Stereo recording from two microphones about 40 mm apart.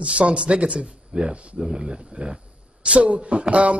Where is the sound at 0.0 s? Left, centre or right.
Right.